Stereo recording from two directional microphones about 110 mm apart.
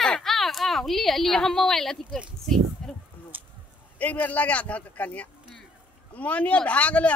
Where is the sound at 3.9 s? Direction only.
15° left (ahead or behind).